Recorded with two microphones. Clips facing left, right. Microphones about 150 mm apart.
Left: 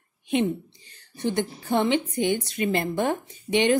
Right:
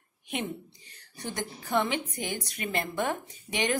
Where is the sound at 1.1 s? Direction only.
25° left (ahead or behind).